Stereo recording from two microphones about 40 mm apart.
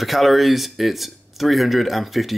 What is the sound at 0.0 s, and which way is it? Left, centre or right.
Speech, centre.